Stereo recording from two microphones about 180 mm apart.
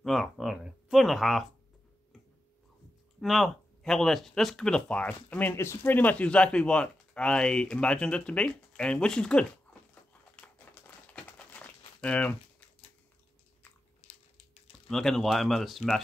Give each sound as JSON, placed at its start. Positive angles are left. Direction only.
{"t": 0.0, "sound": "speech", "side_deg": 0}
{"t": 3.2, "sound": "speech", "side_deg": 0}
{"t": 10.3, "sound": "crumpling", "side_deg": 5}
{"t": 14.0, "sound": "a sound", "side_deg": 35}
{"t": 14.9, "sound": "speech", "side_deg": 0}